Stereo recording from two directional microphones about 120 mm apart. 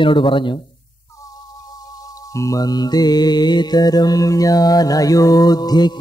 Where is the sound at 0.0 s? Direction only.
45° left (ahead or behind).